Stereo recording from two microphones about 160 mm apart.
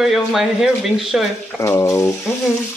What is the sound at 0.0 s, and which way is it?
Speech, centre (ahead or behind).